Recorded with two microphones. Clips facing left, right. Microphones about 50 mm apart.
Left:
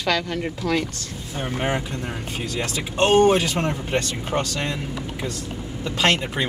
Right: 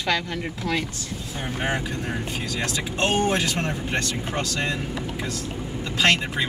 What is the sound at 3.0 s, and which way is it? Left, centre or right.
Speech, left.